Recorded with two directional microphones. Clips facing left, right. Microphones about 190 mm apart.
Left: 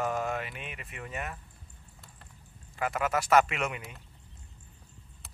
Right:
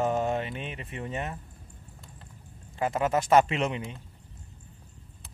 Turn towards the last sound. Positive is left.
turn(degrees=-30)  # may be behind; listen again after turning